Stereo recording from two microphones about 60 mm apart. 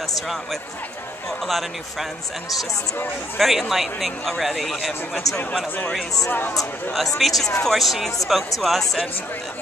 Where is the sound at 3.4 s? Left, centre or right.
Centre.